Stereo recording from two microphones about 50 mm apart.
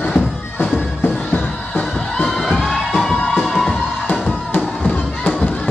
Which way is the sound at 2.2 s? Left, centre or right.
Centre.